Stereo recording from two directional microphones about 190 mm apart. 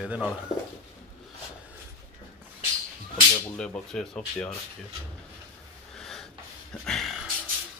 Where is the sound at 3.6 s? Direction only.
5° left (ahead or behind).